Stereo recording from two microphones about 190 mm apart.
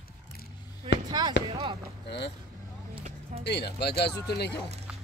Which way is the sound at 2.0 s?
65° left (ahead or behind).